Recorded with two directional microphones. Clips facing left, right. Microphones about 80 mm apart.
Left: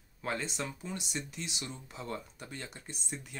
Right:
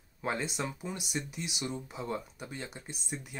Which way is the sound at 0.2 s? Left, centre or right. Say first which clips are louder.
Right 2 dB; centre.